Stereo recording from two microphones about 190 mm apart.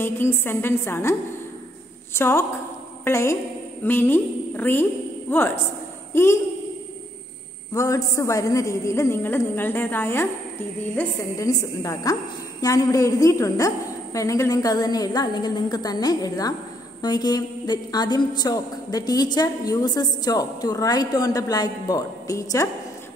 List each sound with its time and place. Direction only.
0.0 s a woman's voice: 10° left (ahead or behind)
2.1 s a woman's voice: 15° left (ahead or behind)
6.1 s a woman's voice: 15° left (ahead or behind)
7.7 s a woman's voice: 15° left (ahead or behind)